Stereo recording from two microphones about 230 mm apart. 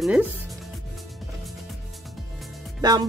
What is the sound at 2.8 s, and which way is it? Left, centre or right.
Speech, centre.